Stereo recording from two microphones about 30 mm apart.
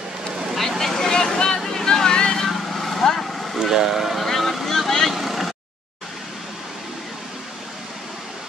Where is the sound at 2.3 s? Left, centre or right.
Centre.